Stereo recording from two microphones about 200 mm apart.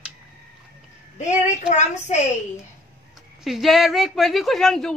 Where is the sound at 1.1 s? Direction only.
35° left (ahead or behind).